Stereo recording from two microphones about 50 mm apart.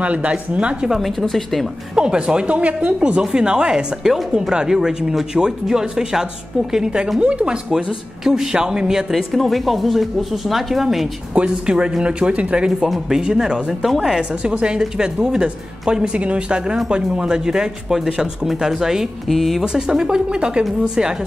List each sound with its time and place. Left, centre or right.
0.0 s speech: right
0.8 s speech: centre
2.0 s speech: centre
9.3 s speech: centre
11.3 s speech: right
12.8 s speech: centre
13.2 s speech: centre
19.2 s speech: centre
19.6 s speech: centre